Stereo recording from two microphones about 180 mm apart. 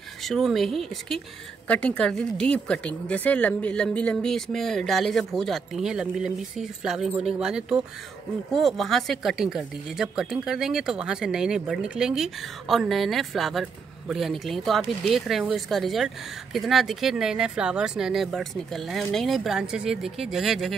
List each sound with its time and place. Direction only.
0.2 s speech: centre (ahead or behind)